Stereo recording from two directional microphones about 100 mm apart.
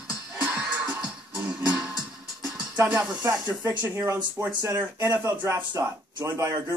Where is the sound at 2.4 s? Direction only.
25° right (ahead or behind).